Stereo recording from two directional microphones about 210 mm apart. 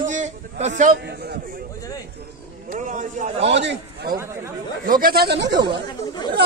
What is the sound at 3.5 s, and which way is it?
Speech, 55° right (ahead or behind).